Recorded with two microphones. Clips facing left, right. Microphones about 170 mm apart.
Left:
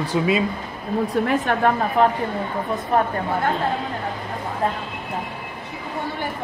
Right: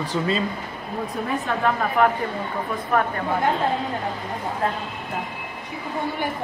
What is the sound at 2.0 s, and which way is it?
A woman's voice, 30° left (ahead or behind).